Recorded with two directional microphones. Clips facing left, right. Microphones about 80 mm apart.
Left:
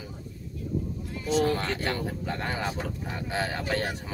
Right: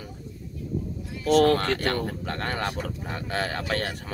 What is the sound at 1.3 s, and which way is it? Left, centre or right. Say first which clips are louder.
Speech: right 6 dB; right.